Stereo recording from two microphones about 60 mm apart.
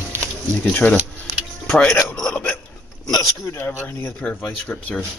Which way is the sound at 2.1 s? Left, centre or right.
Centre.